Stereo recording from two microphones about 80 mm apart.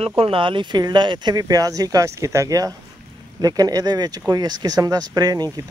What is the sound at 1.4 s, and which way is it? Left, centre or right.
Speech, right.